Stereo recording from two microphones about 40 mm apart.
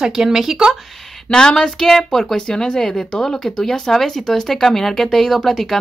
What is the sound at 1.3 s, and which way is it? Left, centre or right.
Speech, centre.